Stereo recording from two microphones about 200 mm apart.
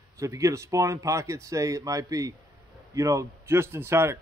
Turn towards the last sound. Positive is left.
turn(degrees=-10)  # may be behind; listen again after turning